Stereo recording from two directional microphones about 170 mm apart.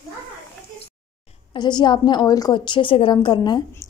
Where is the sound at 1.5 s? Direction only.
25° left (ahead or behind).